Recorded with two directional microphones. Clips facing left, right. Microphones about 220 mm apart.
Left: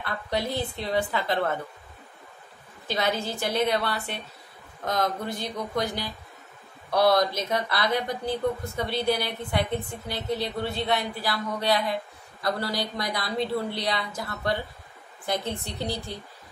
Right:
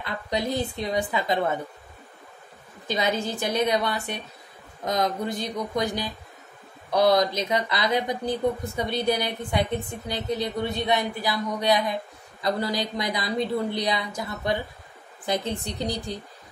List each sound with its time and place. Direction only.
0.0 s a woman's voice: 15° right (ahead or behind)
2.9 s a woman's voice: 15° right (ahead or behind)
6.9 s a woman's voice: 20° right (ahead or behind)